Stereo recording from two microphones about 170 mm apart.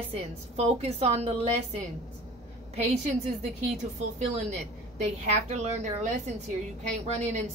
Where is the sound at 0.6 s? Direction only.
40° right (ahead or behind).